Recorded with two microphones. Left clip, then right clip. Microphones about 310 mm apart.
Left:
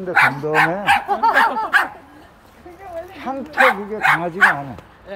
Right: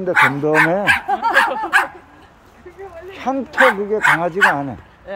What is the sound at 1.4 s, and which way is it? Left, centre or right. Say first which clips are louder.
Dog: even; centre.